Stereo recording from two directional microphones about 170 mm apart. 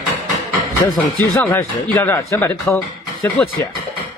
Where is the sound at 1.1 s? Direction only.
10° left (ahead or behind).